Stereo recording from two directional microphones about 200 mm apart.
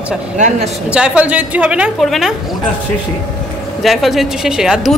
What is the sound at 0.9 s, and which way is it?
Speech, 5° right (ahead or behind).